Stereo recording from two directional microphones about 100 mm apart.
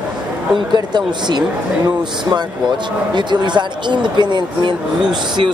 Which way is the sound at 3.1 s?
50° right (ahead or behind).